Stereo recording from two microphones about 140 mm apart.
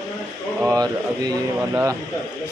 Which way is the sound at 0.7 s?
30° right (ahead or behind).